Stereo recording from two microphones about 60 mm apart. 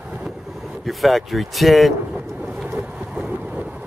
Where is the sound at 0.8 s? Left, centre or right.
Centre.